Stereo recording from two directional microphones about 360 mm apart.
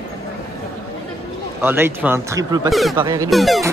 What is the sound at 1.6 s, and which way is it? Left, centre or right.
Speech, centre.